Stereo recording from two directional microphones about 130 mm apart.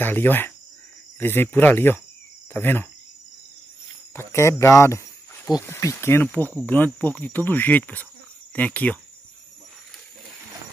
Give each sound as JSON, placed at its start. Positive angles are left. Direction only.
{"t": 0.0, "sound": "speech", "side_deg": 15}
{"t": 4.1, "sound": "speech", "side_deg": 20}